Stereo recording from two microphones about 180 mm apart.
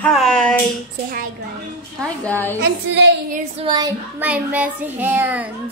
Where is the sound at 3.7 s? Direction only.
20° right (ahead or behind).